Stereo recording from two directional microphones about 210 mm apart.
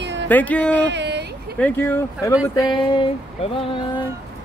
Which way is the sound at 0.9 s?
55° right (ahead or behind).